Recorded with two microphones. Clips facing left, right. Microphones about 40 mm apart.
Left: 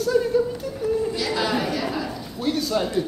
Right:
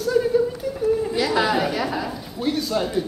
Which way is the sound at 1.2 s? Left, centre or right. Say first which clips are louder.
Right 4 dB; centre.